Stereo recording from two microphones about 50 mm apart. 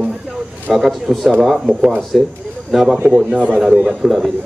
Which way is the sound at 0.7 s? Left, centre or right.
Centre.